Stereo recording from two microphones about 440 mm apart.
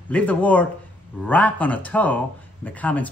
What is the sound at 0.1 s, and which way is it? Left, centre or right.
Speech, centre.